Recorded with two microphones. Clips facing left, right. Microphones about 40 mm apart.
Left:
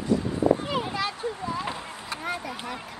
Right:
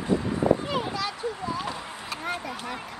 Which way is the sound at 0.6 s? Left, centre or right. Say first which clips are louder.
Even; centre.